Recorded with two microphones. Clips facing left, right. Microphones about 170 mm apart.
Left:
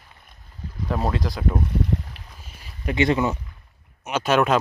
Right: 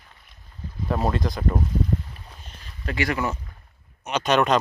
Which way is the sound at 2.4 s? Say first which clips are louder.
Left 4 dB; 10° left (ahead or behind).